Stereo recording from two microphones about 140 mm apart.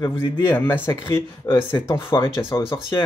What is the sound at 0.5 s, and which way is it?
Speech, 15° left (ahead or behind).